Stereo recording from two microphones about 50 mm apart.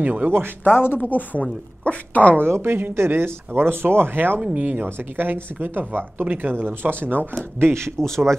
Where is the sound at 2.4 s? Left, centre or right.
Right.